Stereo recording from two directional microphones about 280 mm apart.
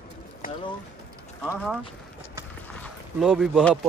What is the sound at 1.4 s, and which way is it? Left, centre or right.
Speech, centre.